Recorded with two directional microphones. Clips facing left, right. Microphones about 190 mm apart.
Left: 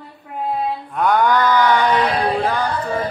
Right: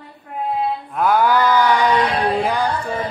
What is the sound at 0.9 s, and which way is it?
Mantra, 5° right (ahead or behind).